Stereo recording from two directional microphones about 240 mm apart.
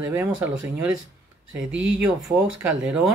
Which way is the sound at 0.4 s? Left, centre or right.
Centre.